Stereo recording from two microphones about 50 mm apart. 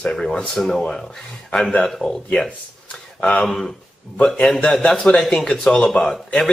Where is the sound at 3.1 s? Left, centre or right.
Left.